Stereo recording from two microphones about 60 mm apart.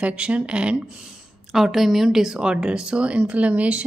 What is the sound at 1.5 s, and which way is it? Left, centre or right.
Speech, centre.